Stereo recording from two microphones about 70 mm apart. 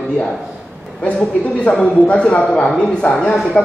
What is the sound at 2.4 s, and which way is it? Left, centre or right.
A man's voice, centre.